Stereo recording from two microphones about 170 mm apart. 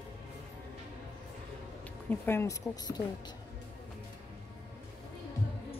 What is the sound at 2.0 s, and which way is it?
Speech, 15° left (ahead or behind).